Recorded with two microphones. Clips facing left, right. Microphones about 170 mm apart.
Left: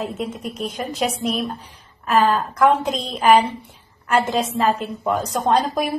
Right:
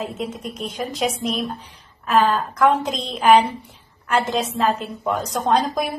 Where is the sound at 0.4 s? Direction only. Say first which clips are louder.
Left 1 dB; 5° left (ahead or behind).